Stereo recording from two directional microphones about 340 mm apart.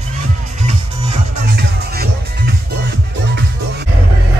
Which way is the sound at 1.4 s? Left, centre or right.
Right.